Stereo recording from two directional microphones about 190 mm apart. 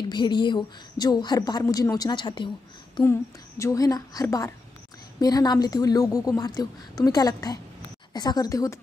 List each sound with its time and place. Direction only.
0.1 s a woman's voice: 25° left (ahead or behind)
3.0 s a woman's voice: 15° left (ahead or behind)